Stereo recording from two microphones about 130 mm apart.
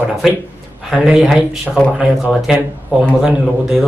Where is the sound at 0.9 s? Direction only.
5° right (ahead or behind).